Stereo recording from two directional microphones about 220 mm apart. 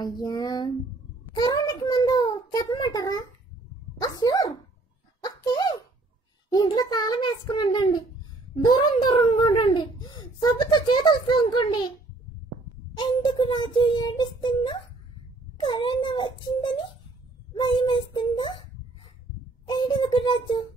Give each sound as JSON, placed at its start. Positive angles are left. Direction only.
{"t": 0.2, "sound": "a child's voice", "side_deg": 20}
{"t": 5.2, "sound": "a sound", "side_deg": 20}
{"t": 6.5, "sound": "a child's voice", "side_deg": 20}
{"t": 12.9, "sound": "a child's voice", "side_deg": 20}
{"t": 17.6, "sound": "a child's voice", "side_deg": 20}
{"t": 19.7, "sound": "a child's voice", "side_deg": 20}